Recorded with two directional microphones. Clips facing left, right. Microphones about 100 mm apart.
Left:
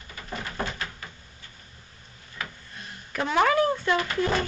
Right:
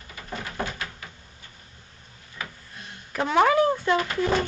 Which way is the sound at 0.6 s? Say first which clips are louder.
Right 1 dB; 5° right (ahead or behind).